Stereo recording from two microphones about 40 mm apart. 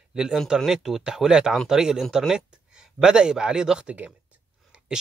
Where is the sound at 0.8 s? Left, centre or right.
Centre.